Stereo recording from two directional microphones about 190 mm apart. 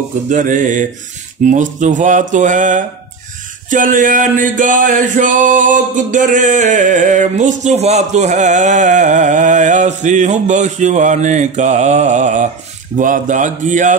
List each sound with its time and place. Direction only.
0.3 s mantra: 40° right (ahead or behind)
1.4 s music: 40° right (ahead or behind)